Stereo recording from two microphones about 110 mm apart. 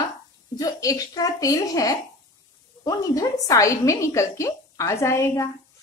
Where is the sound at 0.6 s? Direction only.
35° left (ahead or behind).